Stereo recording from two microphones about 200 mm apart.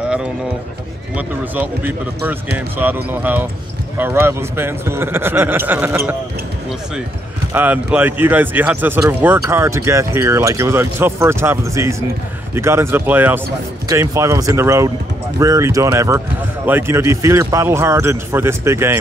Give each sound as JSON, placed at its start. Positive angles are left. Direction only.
{"t": 1.1, "sound": "speech", "side_deg": -10}
{"t": 7.5, "sound": "speech", "side_deg": -10}